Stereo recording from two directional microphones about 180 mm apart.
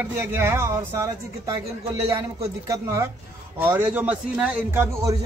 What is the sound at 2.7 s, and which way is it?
Speech, 15° right (ahead or behind).